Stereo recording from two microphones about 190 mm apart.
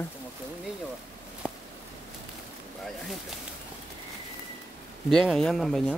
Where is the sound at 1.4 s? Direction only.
5° right (ahead or behind).